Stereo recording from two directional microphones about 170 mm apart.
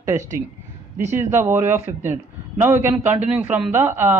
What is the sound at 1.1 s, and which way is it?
Speech, 15° right (ahead or behind).